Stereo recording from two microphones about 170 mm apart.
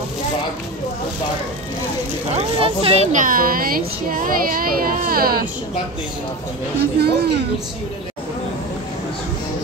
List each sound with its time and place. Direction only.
2.3 s a child's voice: 35° right (ahead or behind); by 5.5 s 60° right (ahead or behind)
6.8 s speech: 70° right (ahead or behind)